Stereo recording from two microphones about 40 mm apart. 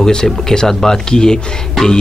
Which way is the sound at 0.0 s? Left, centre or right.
Centre.